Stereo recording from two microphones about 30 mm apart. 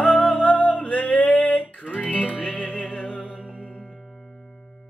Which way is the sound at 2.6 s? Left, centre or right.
Left.